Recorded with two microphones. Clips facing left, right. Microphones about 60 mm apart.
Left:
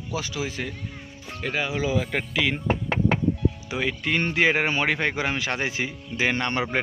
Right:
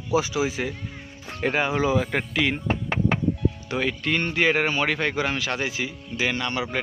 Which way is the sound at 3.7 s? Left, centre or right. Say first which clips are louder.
Right 3 dB; centre.